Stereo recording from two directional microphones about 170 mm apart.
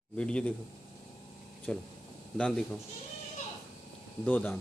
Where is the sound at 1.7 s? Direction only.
5° left (ahead or behind).